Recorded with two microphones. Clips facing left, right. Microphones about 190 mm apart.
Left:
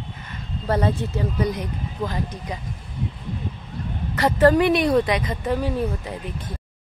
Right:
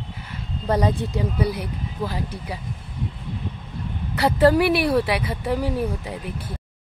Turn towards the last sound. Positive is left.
turn(degrees=-10)  # may be behind; listen again after turning